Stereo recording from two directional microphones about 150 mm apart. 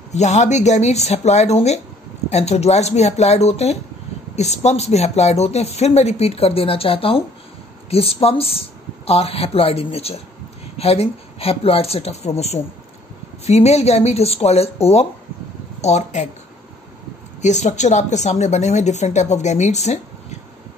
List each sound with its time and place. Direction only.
0.1 s a woman's voice: 50° left (ahead or behind)
17.4 s a woman's voice: 50° left (ahead or behind)